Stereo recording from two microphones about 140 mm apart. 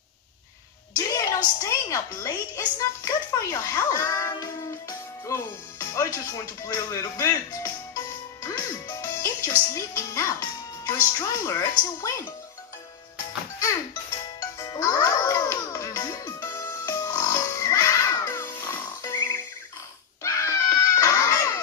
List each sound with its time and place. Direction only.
0.9 s a sound: 25° left (ahead or behind)
1.6 s a woman's voice: 25° left (ahead or behind)
14.6 s music: 25° left (ahead or behind)
20.2 s screaming: 20° left (ahead or behind)